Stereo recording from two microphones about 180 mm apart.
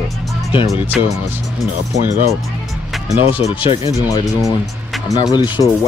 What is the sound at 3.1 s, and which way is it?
Speech, 15° right (ahead or behind).